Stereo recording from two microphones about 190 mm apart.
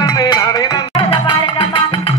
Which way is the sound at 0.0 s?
20° left (ahead or behind).